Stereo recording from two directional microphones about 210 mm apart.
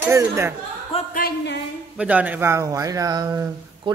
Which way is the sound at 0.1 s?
10° right (ahead or behind).